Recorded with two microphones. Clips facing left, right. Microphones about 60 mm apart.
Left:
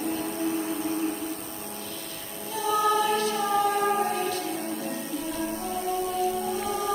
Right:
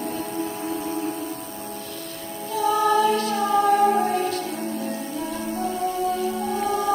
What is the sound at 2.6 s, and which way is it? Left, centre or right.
Choir, right.